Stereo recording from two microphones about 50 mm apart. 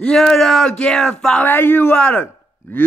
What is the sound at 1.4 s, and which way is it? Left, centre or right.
Speech, left.